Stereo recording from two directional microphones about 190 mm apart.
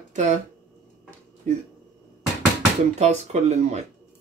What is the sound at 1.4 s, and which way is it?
Speech, 40° right (ahead or behind).